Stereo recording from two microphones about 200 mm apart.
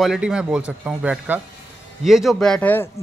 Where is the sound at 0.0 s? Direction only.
5° right (ahead or behind).